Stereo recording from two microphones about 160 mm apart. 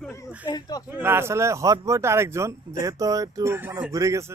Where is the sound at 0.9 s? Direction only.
15° right (ahead or behind).